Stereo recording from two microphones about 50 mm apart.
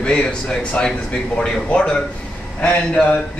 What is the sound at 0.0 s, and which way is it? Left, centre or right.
Speech, centre.